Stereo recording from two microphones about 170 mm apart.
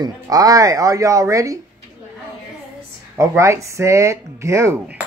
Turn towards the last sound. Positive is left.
turn(degrees=-10)  # may be behind; listen again after turning